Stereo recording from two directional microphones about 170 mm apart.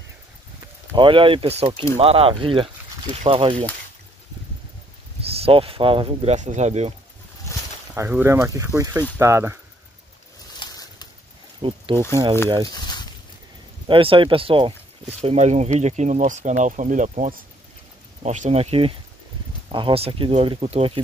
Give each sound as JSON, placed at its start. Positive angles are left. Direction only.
{"t": 0.9, "sound": "speech", "side_deg": -30}
{"t": 5.2, "sound": "speech", "side_deg": -35}
{"t": 7.9, "sound": "speech", "side_deg": -10}
{"t": 10.6, "sound": "pigeon", "side_deg": 25}
{"t": 11.6, "sound": "speech", "side_deg": -30}
{"t": 12.6, "sound": "a sound", "side_deg": 25}
{"t": 13.8, "sound": "speech", "side_deg": -30}